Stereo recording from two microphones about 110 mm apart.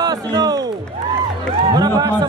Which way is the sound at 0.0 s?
35° right (ahead or behind).